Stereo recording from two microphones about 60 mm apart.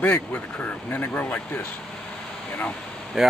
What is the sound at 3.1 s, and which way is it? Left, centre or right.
Speech, centre.